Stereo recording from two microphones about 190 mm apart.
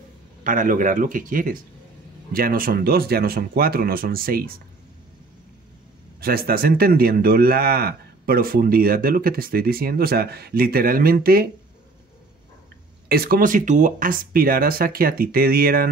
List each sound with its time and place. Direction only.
0.4 s speech: 45° right (ahead or behind)
6.2 s speech: 50° right (ahead or behind)
13.1 s speech: 50° right (ahead or behind)